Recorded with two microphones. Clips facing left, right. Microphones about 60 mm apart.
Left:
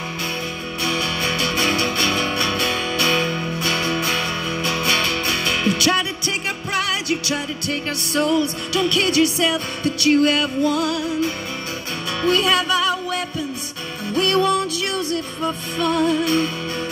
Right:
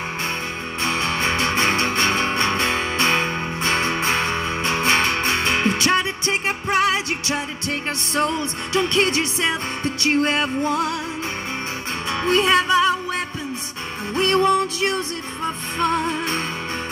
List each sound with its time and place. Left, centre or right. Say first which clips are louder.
0.8 s music: right 1 dB; right